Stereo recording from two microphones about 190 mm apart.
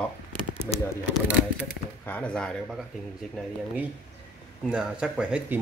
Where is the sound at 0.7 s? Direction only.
5° left (ahead or behind).